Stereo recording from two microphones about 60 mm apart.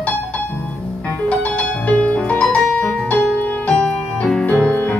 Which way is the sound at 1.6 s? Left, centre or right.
Left.